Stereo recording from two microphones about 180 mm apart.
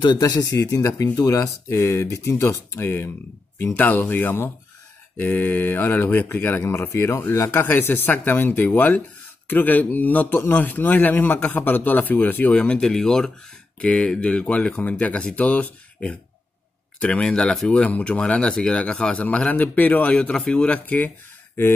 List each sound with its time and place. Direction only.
0.0 s a man's voice: 25° left (ahead or behind)